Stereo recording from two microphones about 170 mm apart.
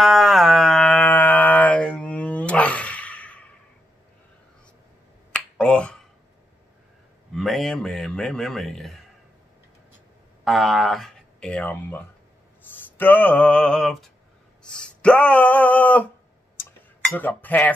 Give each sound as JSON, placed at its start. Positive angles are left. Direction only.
{"t": 0.0, "sound": "music", "side_deg": 0}
{"t": 5.3, "sound": "finger snapping", "side_deg": 5}
{"t": 7.3, "sound": "a man's voice", "side_deg": 0}
{"t": 10.4, "sound": "speech", "side_deg": 0}
{"t": 12.7, "sound": "a sound", "side_deg": 10}
{"t": 17.1, "sound": "speech", "side_deg": 10}